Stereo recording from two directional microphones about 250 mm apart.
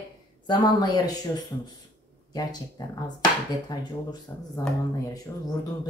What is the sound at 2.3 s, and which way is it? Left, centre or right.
Speech, centre.